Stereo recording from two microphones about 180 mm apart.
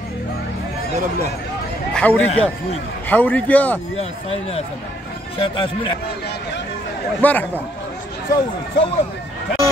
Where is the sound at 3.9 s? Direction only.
35° left (ahead or behind).